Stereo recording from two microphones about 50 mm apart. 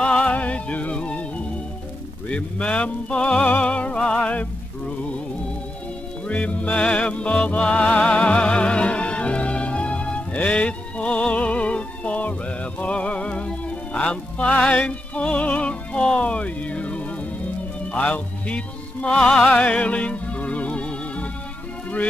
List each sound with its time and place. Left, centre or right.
0.0 s music: left
2.2 s a sound: left
3.6 s music: left
6.2 s music: left
19.6 s music: left